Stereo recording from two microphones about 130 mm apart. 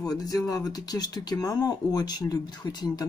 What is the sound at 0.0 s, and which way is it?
Speech, 30° left (ahead or behind).